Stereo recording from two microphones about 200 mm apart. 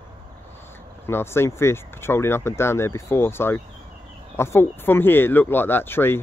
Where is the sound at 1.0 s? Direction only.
10° left (ahead or behind).